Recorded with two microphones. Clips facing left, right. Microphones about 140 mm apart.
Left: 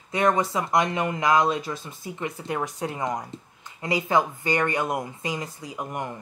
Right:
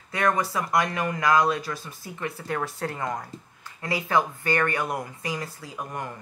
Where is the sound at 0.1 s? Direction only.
20° left (ahead or behind).